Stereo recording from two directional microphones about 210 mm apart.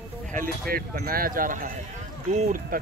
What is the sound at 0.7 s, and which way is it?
Speech, 45° right (ahead or behind).